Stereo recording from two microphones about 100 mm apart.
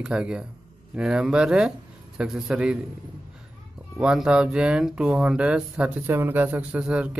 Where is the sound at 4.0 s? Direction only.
10° right (ahead or behind).